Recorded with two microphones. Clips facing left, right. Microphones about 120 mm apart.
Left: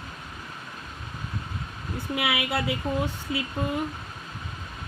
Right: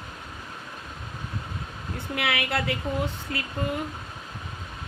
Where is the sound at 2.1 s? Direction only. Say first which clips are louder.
Even; 5° left (ahead or behind).